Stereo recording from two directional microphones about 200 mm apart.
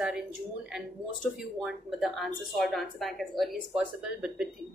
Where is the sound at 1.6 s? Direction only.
Centre (ahead or behind).